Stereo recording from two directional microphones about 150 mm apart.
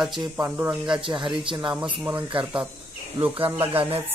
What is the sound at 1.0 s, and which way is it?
Speech, 30° right (ahead or behind).